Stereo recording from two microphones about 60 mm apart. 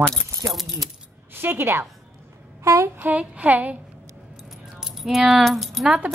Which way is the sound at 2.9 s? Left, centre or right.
Right.